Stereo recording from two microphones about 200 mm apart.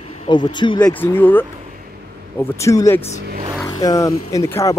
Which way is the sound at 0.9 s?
10° left (ahead or behind).